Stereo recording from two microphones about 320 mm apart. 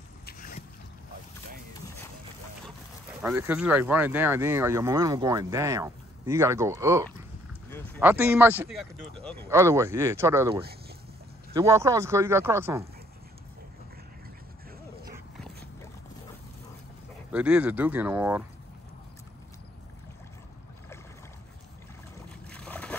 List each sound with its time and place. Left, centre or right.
0.3 s boat: left
3.2 s speech: centre
15.1 s dog: centre
17.3 s speech: centre
22.5 s boat: centre